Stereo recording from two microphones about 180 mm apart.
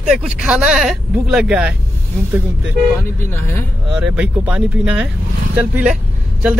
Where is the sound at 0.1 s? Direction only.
5° right (ahead or behind).